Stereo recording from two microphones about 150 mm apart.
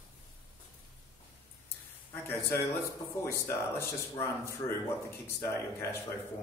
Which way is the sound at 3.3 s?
15° left (ahead or behind).